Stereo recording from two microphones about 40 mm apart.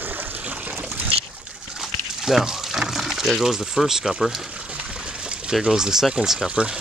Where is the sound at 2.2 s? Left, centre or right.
Centre.